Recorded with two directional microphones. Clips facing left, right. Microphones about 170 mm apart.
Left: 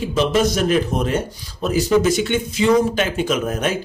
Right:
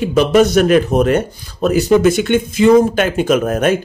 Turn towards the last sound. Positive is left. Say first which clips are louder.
# right 7 dB
turn(degrees=-55)  # may be behind; listen again after turning